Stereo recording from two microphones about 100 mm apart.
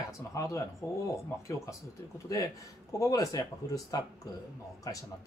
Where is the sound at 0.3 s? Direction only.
30° left (ahead or behind).